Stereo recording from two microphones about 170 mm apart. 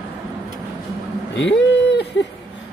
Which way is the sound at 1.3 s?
90° left.